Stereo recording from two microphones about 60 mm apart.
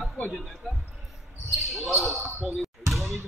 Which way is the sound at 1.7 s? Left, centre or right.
Centre.